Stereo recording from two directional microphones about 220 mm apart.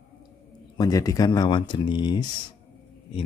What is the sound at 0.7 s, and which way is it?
Speech, 15° left (ahead or behind).